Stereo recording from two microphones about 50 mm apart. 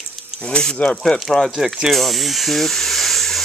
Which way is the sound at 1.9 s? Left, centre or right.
Centre.